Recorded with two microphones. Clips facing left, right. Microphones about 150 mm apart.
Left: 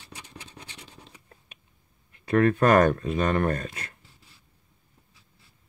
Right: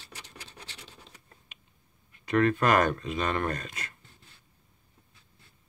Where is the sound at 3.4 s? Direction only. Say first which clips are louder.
Left 5 dB; 35° left (ahead or behind).